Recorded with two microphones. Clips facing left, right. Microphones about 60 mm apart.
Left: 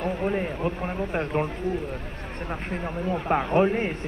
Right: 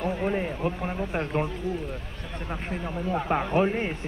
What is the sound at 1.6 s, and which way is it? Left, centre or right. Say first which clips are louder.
Speech: left 3 dB; left.